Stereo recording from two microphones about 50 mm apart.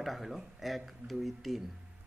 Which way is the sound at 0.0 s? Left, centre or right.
Centre.